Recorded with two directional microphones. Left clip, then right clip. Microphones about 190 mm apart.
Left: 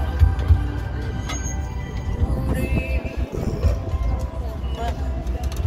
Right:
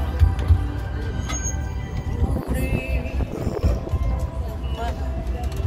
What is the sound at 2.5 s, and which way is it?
Music, 55° right (ahead or behind).